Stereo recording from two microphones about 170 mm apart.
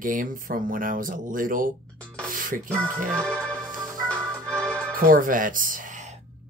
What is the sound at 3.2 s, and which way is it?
Speech, 5° left (ahead or behind).